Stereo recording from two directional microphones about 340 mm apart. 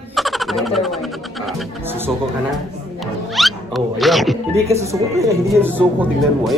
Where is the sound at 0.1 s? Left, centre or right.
Centre.